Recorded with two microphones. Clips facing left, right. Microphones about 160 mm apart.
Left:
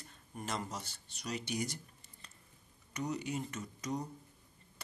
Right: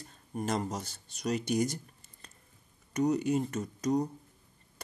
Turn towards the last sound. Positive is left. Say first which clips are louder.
# right 10 dB
turn(degrees=-40)  # may be behind; listen again after turning